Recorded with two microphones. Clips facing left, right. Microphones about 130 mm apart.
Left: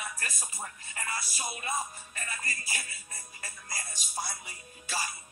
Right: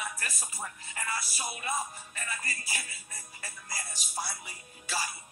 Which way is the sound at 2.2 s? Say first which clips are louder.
Even; 40° left (ahead or behind).